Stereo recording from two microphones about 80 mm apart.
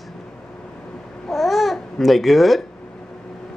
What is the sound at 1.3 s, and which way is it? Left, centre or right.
Babbling, centre.